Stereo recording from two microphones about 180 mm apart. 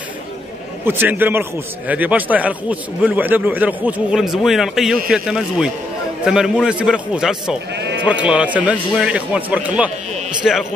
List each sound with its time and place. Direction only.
0.8 s a man's voice: 10° right (ahead or behind)
7.7 s sheep: 70° right (ahead or behind)
8.0 s a man's voice: 5° right (ahead or behind)